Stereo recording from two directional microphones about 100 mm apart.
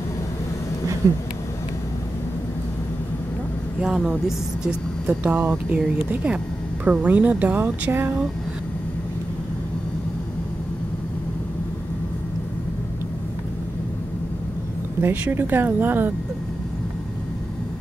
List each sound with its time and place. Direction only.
1.0 s speech: 35° right (ahead or behind)
3.8 s a woman's voice: 5° right (ahead or behind)
15.0 s speech: 20° right (ahead or behind)